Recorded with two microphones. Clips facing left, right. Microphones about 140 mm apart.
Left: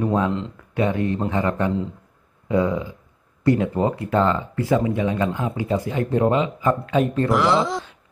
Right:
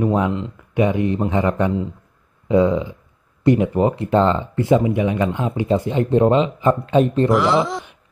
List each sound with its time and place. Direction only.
0.0 s speech: 15° right (ahead or behind)
7.2 s speech: centre (ahead or behind)